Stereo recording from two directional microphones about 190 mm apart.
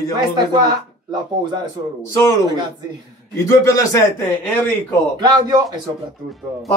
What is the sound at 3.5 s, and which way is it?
Speech, 15° left (ahead or behind).